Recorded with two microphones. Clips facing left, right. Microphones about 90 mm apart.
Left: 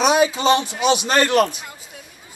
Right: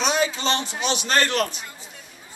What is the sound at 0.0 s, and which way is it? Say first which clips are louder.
A man's voice: left 6 dB; 10° left (ahead or behind).